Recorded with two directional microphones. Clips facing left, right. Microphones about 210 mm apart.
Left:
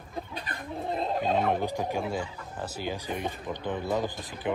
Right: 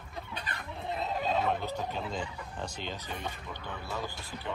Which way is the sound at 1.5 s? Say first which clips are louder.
Left 5 dB; 15° left (ahead or behind).